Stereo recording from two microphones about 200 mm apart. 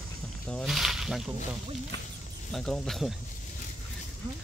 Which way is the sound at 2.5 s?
5° left (ahead or behind).